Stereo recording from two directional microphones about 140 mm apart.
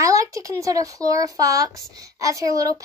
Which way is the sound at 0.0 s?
20° right (ahead or behind).